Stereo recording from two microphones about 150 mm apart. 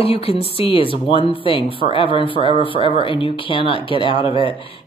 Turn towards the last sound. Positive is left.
turn(degrees=35)  # may be behind; listen again after turning